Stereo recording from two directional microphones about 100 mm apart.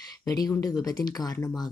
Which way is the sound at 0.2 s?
40° left (ahead or behind).